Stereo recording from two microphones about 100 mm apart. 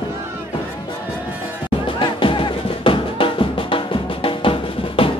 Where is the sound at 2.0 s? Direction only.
55° left (ahead or behind).